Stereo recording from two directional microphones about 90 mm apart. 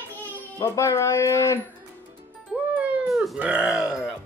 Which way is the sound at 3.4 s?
10° right (ahead or behind).